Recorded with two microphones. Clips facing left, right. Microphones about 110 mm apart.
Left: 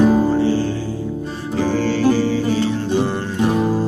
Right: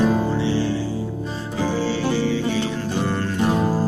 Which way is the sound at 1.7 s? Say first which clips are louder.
Left 6 dB; 50° left (ahead or behind).